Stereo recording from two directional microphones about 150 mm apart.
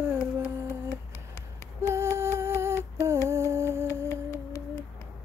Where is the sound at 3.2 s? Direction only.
20° right (ahead or behind).